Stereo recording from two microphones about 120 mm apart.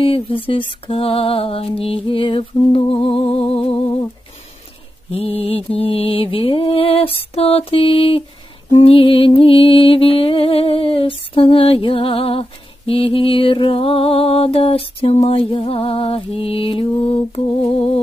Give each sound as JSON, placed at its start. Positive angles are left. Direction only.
{"t": 0.0, "sound": "music", "side_deg": 50}
{"t": 5.1, "sound": "music", "side_deg": 55}
{"t": 17.7, "sound": "a sound", "side_deg": 55}